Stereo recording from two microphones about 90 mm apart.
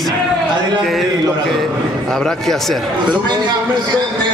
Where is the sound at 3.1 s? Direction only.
55° right (ahead or behind).